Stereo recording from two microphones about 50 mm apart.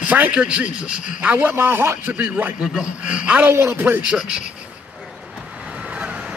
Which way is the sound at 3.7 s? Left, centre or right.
Right.